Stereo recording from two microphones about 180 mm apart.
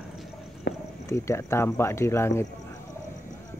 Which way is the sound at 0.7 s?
65° left (ahead or behind).